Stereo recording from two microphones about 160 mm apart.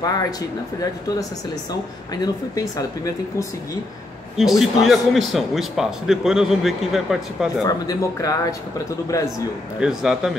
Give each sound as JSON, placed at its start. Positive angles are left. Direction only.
{"t": 2.2, "sound": "a man's voice", "side_deg": 20}
{"t": 4.4, "sound": "a man's voice", "side_deg": 0}
{"t": 7.6, "sound": "a man's voice", "side_deg": 25}
{"t": 9.8, "sound": "a man's voice", "side_deg": -5}